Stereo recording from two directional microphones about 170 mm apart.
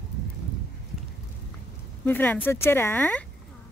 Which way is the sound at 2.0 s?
10° left (ahead or behind).